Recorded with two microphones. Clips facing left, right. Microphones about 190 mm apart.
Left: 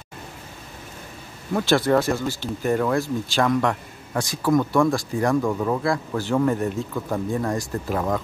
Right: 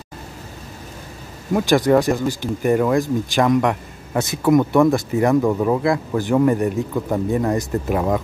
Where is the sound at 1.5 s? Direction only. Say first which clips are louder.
Right 4 dB; 15° right (ahead or behind).